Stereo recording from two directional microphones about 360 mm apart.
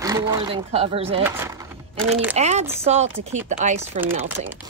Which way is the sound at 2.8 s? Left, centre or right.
Centre.